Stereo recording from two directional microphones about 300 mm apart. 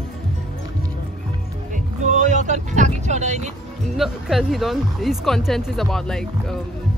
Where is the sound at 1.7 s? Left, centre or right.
Right.